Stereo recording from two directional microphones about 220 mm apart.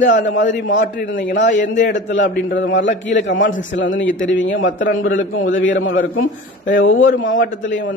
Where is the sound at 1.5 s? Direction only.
35° left (ahead or behind).